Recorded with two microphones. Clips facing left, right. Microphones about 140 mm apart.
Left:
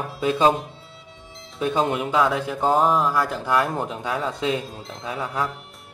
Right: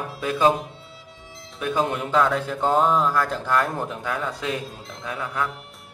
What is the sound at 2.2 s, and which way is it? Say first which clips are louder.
Speech: right 1 dB; 5° left (ahead or behind).